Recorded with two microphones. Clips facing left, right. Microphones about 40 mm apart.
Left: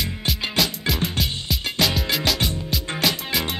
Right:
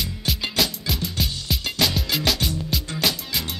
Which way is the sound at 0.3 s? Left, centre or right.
Centre.